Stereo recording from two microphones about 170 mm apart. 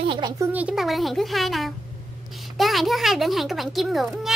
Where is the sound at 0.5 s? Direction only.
5° right (ahead or behind).